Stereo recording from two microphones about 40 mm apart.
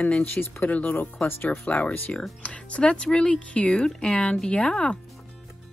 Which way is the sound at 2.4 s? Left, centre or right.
Left.